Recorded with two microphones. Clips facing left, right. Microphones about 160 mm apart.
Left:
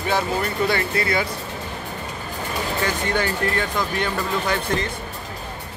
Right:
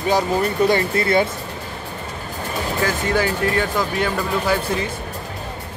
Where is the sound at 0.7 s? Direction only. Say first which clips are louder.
Right 4 dB; 25° right (ahead or behind).